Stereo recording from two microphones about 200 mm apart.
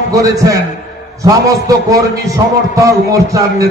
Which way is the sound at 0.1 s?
15° right (ahead or behind).